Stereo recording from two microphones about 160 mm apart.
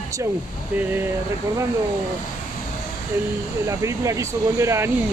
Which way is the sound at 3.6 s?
20° right (ahead or behind).